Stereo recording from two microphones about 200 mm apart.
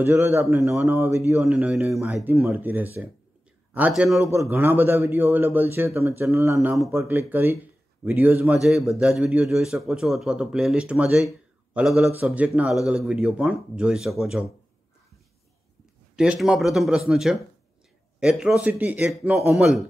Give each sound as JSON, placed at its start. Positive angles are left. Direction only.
{"t": 0.0, "sound": "a man's voice", "side_deg": -10}
{"t": 4.3, "sound": "a man's voice", "side_deg": -10}
{"t": 16.2, "sound": "a man's voice", "side_deg": -5}